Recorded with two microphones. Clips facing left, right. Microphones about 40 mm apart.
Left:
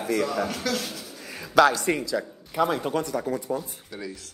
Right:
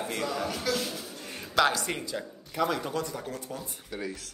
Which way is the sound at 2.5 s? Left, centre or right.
Centre.